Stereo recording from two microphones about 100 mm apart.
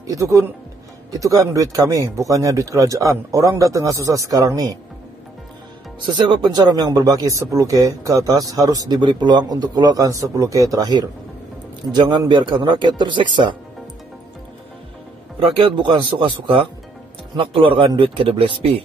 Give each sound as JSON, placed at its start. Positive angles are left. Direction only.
{"t": 0.0, "sound": "speech", "side_deg": -35}
{"t": 6.1, "sound": "speech", "side_deg": -50}
{"t": 15.5, "sound": "a man's voice", "side_deg": -55}